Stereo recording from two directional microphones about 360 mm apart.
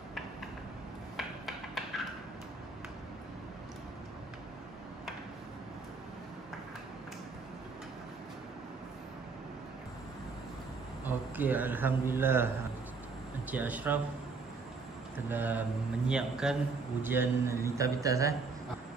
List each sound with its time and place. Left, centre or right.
1.1 s a sound: centre
11.1 s speech: centre
13.5 s a man's voice: centre
15.2 s a man's voice: centre